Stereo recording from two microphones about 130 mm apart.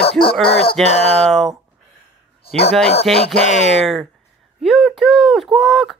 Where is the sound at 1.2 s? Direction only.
Centre (ahead or behind).